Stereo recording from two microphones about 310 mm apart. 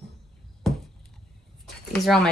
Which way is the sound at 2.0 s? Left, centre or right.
Centre.